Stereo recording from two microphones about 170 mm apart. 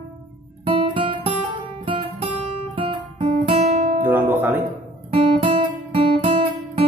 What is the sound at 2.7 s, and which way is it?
Guitar, 35° right (ahead or behind).